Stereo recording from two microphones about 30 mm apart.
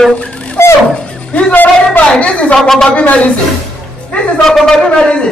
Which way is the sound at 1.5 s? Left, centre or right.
Left.